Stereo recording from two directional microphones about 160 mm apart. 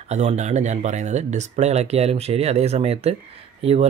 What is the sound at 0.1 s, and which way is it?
Speech, 45° right (ahead or behind).